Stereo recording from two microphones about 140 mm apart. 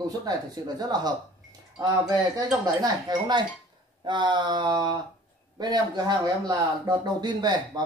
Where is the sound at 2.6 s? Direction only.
30° right (ahead or behind).